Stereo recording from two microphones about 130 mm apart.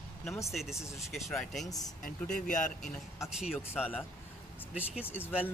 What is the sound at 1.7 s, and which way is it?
Speech, 30° left (ahead or behind).